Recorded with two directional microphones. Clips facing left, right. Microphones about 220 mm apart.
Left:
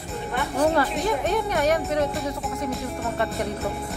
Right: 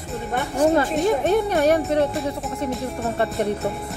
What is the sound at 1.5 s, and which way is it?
Speech, 30° right (ahead or behind).